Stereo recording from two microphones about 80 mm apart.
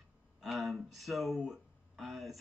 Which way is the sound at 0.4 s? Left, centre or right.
Centre.